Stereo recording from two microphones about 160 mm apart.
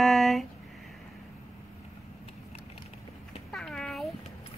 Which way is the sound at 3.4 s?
Centre (ahead or behind).